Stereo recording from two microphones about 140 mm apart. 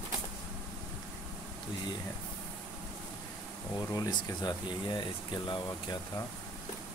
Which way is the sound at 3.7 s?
25° left (ahead or behind).